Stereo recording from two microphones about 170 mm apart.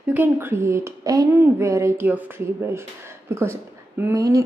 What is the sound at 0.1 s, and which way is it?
A woman's voice, 10° right (ahead or behind).